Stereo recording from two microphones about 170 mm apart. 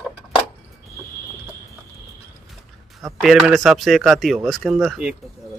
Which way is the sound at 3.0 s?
Centre (ahead or behind).